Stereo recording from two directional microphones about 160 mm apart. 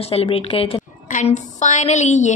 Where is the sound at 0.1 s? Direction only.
35° left (ahead or behind).